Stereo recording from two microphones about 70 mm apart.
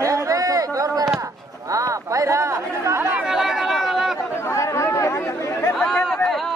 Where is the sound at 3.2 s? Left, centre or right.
Centre.